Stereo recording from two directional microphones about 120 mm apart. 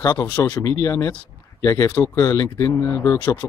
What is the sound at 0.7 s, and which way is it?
Speech, 30° left (ahead or behind).